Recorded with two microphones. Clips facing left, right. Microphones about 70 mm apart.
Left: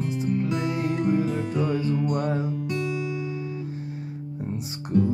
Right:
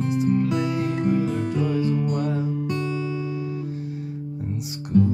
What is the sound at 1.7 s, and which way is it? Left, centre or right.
Music, left.